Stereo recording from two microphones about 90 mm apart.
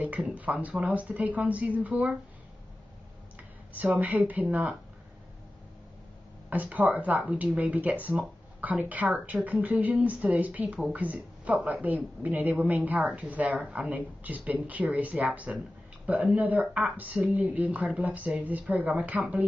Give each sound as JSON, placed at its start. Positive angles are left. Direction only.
{"t": 0.0, "sound": "a woman's voice", "side_deg": -15}
{"t": 3.3, "sound": "speech", "side_deg": -15}
{"t": 6.5, "sound": "a woman's voice", "side_deg": -15}